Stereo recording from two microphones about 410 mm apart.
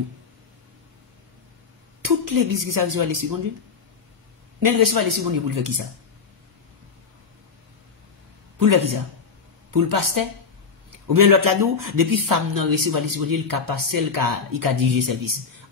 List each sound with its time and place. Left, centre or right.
2.0 s speech: right
4.6 s speech: right
8.5 s speech: right